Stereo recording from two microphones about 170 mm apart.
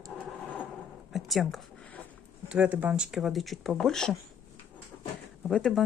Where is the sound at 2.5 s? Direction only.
5° right (ahead or behind).